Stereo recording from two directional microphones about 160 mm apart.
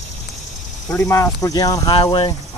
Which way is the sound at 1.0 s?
20° left (ahead or behind).